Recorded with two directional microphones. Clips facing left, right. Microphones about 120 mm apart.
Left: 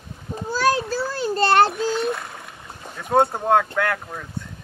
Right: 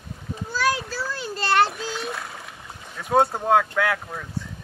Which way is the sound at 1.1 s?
35° left (ahead or behind).